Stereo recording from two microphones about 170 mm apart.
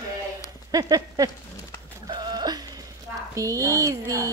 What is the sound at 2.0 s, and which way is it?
Sheep, 25° right (ahead or behind).